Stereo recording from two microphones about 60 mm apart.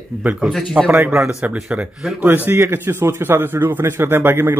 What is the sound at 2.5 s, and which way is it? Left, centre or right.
Speech, right.